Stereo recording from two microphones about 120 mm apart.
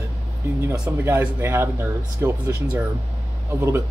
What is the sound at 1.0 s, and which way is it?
Speech, 20° right (ahead or behind).